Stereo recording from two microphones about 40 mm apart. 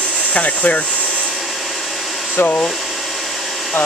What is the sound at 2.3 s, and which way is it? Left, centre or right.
Speech, left.